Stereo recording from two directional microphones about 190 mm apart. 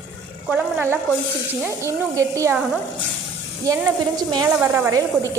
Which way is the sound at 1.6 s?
15° right (ahead or behind).